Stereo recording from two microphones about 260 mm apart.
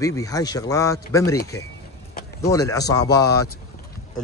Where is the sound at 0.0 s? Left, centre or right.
Centre.